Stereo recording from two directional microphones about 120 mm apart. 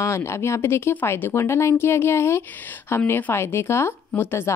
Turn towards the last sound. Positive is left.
turn(degrees=20)  # may be behind; listen again after turning